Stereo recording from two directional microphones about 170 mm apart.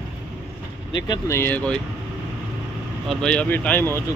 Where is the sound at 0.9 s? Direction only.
25° left (ahead or behind).